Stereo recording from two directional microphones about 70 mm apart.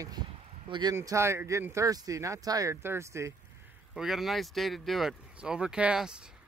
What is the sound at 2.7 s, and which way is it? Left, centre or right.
Speech, right.